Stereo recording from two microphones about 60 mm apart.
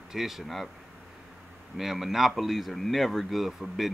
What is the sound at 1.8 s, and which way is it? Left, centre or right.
Speech, centre.